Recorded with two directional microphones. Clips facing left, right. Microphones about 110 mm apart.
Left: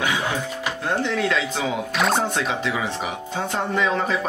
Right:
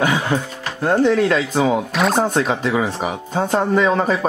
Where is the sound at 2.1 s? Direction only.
45° right (ahead or behind).